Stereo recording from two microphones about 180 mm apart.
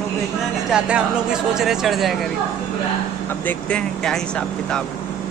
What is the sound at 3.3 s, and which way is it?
Speech, 10° left (ahead or behind).